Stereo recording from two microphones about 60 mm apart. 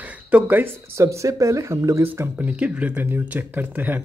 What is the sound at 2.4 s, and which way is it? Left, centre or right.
Speech, right.